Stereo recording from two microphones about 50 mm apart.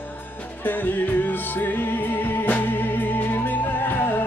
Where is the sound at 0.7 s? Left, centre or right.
Left.